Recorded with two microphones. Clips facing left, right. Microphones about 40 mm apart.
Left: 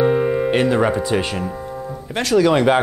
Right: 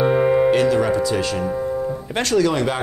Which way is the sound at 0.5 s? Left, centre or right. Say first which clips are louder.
Even; left.